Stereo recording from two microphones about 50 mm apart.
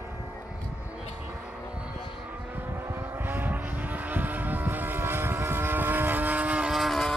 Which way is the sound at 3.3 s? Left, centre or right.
Right.